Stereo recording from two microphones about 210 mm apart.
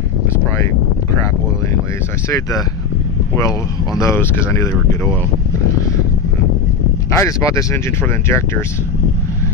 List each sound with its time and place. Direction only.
2.2 s speech: 15° left (ahead or behind)
7.2 s speech: 15° left (ahead or behind)